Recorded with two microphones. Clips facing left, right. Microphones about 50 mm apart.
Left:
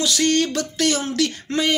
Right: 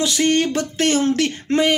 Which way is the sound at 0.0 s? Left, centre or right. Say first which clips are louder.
Right 2 dB; right.